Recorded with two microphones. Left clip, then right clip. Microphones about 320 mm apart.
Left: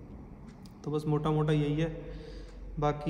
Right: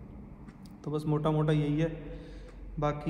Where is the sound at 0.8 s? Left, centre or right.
Centre.